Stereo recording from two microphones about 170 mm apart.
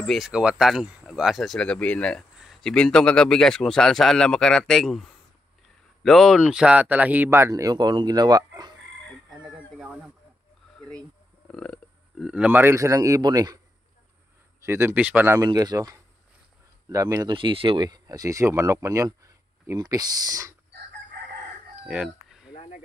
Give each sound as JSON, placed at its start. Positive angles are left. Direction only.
{"t": 0.0, "sound": "a man's voice", "side_deg": 0}
{"t": 6.0, "sound": "speech", "side_deg": 0}
{"t": 9.8, "sound": "a sound", "side_deg": -5}
{"t": 11.4, "sound": "a man's voice", "side_deg": 5}
{"t": 14.6, "sound": "speech", "side_deg": -15}
{"t": 21.8, "sound": "chicken", "side_deg": -5}